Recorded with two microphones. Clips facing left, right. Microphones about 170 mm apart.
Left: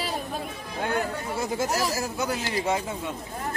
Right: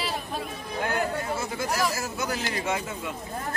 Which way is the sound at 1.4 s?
35° left (ahead or behind).